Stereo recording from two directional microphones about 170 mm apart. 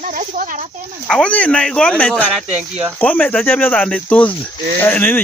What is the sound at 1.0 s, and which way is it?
Speech, 5° left (ahead or behind).